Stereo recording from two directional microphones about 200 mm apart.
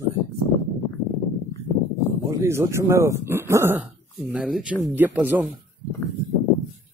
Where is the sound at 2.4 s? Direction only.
15° right (ahead or behind).